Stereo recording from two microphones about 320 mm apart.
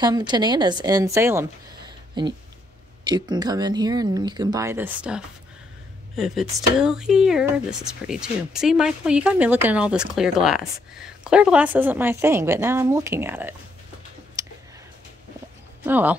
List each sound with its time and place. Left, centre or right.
0.0 s speech: centre
14.4 s a sound: centre
15.8 s speech: centre